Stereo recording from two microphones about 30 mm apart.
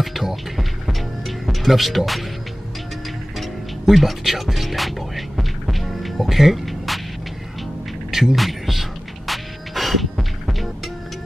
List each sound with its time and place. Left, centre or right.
0.0 s music: centre
1.4 s speech: centre
3.3 s music: centre
8.1 s music: centre
8.4 s beatboxing: centre
9.3 s music: centre